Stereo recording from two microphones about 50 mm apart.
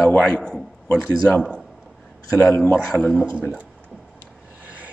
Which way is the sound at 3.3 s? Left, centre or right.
Right.